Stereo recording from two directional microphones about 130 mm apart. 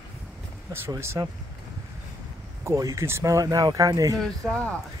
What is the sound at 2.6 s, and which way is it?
Speech, 25° right (ahead or behind).